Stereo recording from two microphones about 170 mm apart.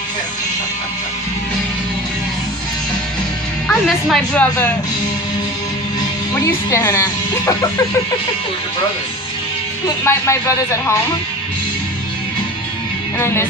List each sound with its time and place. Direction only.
3.6 s speech: 5° left (ahead or behind)
6.4 s speech: 15° left (ahead or behind)
9.8 s speech: 15° left (ahead or behind)
13.2 s speech: 15° left (ahead or behind)